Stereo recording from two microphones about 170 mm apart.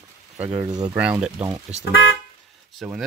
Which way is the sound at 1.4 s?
40° right (ahead or behind).